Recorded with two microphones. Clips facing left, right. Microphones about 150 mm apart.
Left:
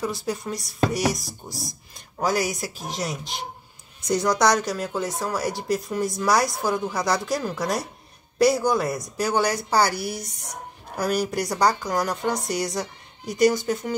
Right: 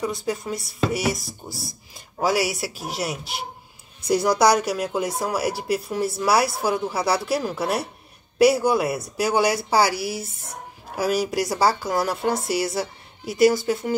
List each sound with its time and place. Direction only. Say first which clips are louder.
0.0 s speech: right 1 dB; centre (ahead or behind)